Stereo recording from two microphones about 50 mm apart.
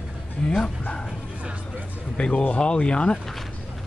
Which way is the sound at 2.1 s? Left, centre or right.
Left.